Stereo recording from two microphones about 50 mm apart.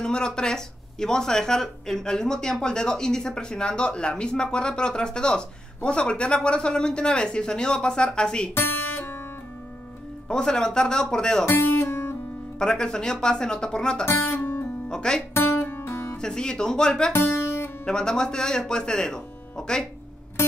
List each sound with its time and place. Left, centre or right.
0.0 s speech: centre
8.5 s music: left
10.2 s speech: centre
11.4 s music: left
12.5 s speech: centre
14.0 s speech: left
14.9 s speech: centre
15.3 s music: left
16.2 s speech: centre
17.1 s music: left
17.8 s speech: centre